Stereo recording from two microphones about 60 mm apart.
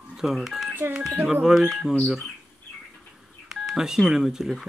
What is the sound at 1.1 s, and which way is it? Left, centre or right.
Speech, right.